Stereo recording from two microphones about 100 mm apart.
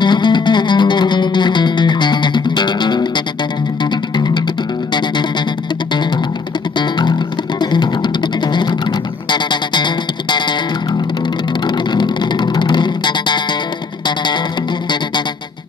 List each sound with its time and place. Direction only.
0.0 s music: 50° left (ahead or behind)
6.8 s music: 50° left (ahead or behind)
9.3 s music: 50° left (ahead or behind)
11.6 s guitar: 50° left (ahead or behind)